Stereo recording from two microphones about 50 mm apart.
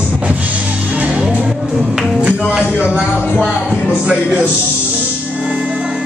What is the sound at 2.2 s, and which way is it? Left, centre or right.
Music, right.